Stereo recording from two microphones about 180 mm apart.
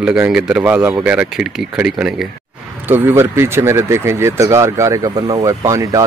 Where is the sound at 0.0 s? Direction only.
5° right (ahead or behind).